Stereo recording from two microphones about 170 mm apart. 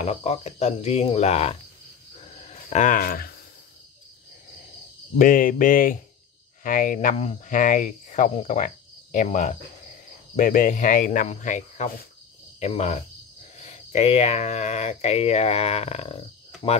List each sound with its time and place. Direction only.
0.0 s speech: 40° left (ahead or behind)
2.1 s a sound: 40° left (ahead or behind); by 3.3 s 60° left (ahead or behind)
5.1 s cricket: 50° left (ahead or behind)
12.5 s speech: 40° left (ahead or behind)